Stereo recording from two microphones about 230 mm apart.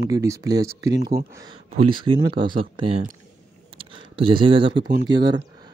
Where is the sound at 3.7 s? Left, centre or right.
Right.